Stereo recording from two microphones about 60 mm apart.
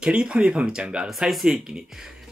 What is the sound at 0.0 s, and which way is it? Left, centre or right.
Speech, centre.